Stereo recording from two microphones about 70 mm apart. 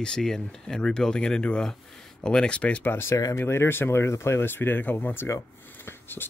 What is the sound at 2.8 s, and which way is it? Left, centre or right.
Speech, left.